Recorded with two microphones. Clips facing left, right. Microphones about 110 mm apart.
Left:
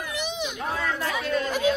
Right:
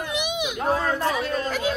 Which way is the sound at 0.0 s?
15° right (ahead or behind).